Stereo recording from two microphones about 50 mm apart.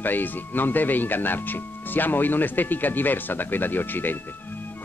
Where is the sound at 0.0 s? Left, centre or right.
Left.